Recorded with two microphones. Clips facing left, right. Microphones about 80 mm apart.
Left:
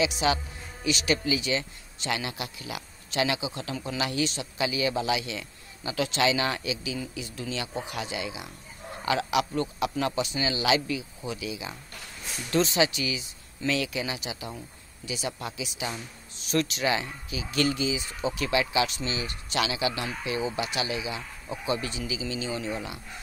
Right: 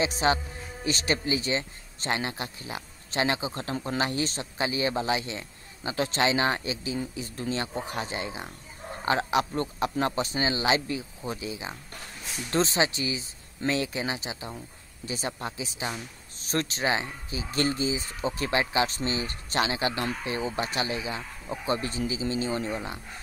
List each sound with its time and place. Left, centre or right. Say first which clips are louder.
0.0 s speech: right 1 dB; right